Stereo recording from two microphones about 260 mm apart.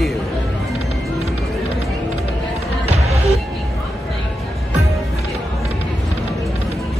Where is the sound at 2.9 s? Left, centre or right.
Right.